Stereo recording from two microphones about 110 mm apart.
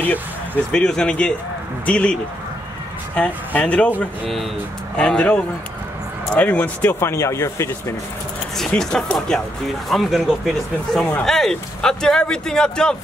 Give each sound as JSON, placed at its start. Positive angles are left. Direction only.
{"t": 0.7, "sound": "speech", "side_deg": 5}
{"t": 3.2, "sound": "speech", "side_deg": 10}
{"t": 4.0, "sound": "speech", "side_deg": 0}
{"t": 8.5, "sound": "speech", "side_deg": 5}